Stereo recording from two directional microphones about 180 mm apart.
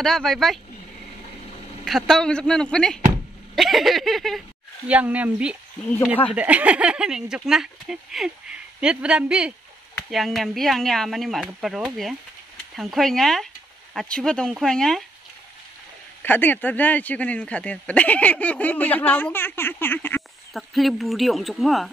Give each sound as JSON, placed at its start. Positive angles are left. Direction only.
{"t": 0.0, "sound": "speech", "side_deg": 0}
{"t": 1.9, "sound": "speech", "side_deg": 0}
{"t": 16.2, "sound": "speech", "side_deg": 10}
{"t": 20.5, "sound": "speech", "side_deg": 0}